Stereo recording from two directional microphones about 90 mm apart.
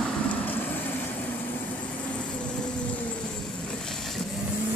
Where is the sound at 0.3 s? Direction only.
20° left (ahead or behind).